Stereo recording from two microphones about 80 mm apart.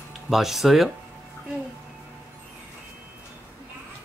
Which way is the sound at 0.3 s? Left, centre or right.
Centre.